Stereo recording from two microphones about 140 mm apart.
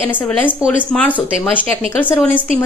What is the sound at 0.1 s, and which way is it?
A woman's voice, 10° left (ahead or behind).